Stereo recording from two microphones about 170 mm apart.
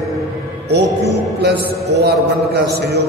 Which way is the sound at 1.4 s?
75° right (ahead or behind).